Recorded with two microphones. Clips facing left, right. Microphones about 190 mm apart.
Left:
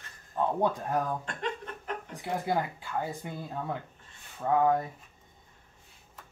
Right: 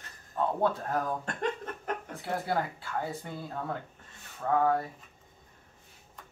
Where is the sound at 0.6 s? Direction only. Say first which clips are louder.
Left 1 dB; 15° left (ahead or behind).